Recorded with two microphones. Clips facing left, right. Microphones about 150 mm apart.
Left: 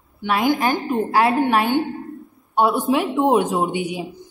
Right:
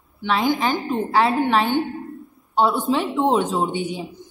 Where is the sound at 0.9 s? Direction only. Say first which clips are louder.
Left 1 dB; 10° left (ahead or behind).